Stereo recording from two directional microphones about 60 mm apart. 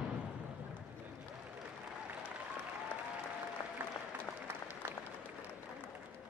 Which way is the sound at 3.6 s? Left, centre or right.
Left.